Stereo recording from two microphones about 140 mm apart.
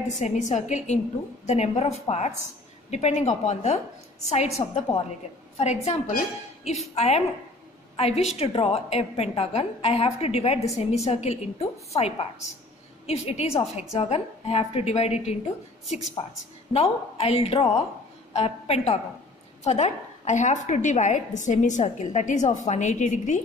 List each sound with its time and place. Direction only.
0.1 s a woman's voice: 60° left (ahead or behind)